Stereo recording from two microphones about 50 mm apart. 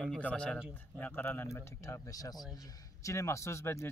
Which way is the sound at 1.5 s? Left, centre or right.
Left.